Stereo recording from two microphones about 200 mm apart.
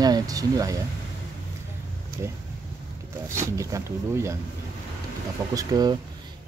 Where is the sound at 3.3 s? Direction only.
15° right (ahead or behind).